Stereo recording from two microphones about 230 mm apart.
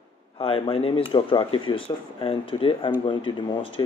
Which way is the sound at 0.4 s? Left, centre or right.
Left.